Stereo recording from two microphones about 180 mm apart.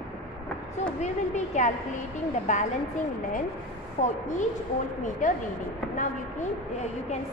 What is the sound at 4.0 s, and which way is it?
Speech, 40° left (ahead or behind).